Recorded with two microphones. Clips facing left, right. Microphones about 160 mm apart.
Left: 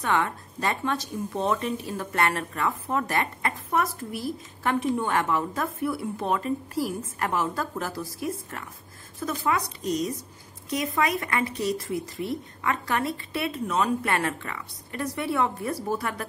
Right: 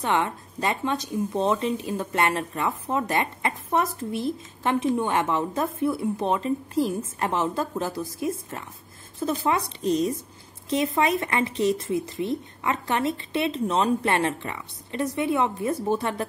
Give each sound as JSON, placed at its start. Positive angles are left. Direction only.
{"t": 0.0, "sound": "speech", "side_deg": -20}